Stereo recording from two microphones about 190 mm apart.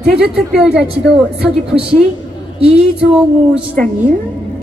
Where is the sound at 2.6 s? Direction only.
5° right (ahead or behind).